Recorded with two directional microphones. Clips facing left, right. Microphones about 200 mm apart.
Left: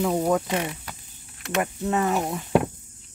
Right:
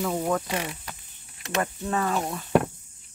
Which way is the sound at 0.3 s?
15° left (ahead or behind).